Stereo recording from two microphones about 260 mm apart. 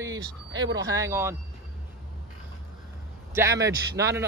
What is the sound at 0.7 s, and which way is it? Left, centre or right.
Speech, centre.